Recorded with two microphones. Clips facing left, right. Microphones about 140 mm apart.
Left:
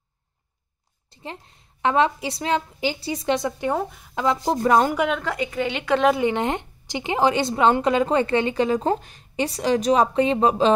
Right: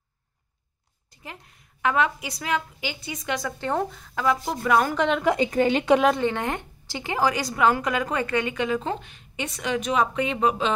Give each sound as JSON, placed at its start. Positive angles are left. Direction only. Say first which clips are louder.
{"t": 1.1, "sound": "a woman's voice", "louder": "left 6 dB", "side_deg": 30}
{"t": 4.1, "sound": "speech", "louder": "left 2 dB", "side_deg": 20}
{"t": 4.4, "sound": "speech", "louder": "left 7 dB", "side_deg": 35}
{"t": 4.9, "sound": "a woman's voice", "louder": "even", "side_deg": 5}
{"t": 5.5, "sound": "a woman's voice", "louder": "right 5 dB", "side_deg": -40}
{"t": 6.1, "sound": "a woman's voice", "louder": "left 3 dB", "side_deg": 15}